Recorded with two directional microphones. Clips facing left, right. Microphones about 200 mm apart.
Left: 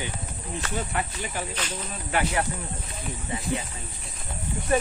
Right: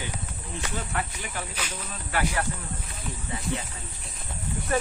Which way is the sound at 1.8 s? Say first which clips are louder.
Left 1 dB; 20° left (ahead or behind).